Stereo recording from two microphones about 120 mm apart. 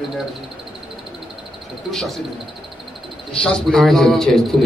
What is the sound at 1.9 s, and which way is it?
Speech, centre (ahead or behind).